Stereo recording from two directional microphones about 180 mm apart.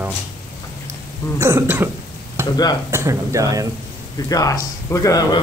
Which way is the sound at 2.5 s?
20° left (ahead or behind).